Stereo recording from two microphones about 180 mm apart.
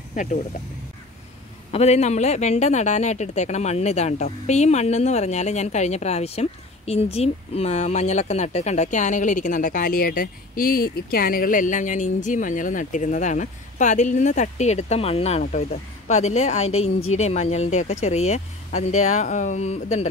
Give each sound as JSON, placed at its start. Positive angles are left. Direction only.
{"t": 0.1, "sound": "speech", "side_deg": 45}
{"t": 1.7, "sound": "speech", "side_deg": 35}
{"t": 15.4, "sound": "speech", "side_deg": 55}
{"t": 16.1, "sound": "speech", "side_deg": 40}